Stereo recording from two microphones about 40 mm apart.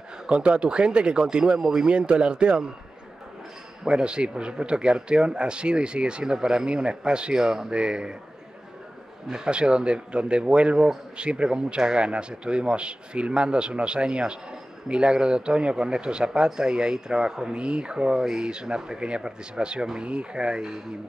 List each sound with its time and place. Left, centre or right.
0.3 s a man's voice: right
3.8 s a man's voice: right
9.5 s a man's voice: right